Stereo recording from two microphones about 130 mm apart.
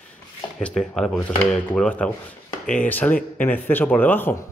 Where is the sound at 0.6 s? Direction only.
5° left (ahead or behind).